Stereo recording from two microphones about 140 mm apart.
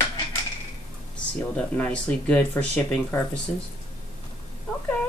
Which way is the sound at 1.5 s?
10° left (ahead or behind).